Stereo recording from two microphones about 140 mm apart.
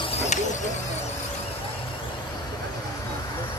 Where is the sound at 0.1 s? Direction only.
55° left (ahead or behind).